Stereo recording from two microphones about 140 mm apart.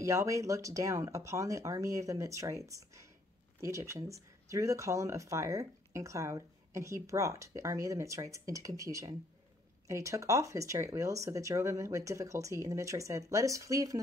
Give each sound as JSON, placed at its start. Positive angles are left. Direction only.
{"t": 0.0, "sound": "speech", "side_deg": -20}